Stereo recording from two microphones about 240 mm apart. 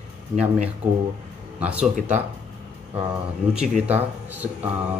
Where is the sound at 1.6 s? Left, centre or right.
Centre.